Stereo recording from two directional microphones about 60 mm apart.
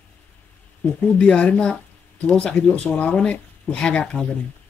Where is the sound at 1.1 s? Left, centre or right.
Centre.